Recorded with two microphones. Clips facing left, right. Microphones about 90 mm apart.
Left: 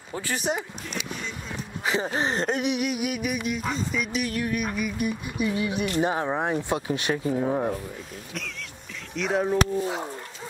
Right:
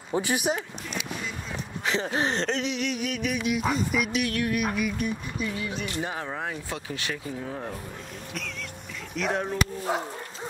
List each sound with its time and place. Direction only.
0.1 s speech: 15° right (ahead or behind)
1.9 s a sound: 5° left (ahead or behind)
3.5 s speech: 5° right (ahead or behind); by 7.7 s 35° left (ahead or behind)
9.1 s speech: centre (ahead or behind)